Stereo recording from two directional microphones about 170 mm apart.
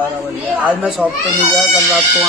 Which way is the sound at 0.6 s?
5° right (ahead or behind).